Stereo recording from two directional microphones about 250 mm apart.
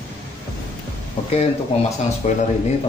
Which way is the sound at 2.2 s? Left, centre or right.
Left.